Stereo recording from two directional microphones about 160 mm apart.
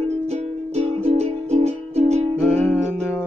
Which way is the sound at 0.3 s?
40° right (ahead or behind).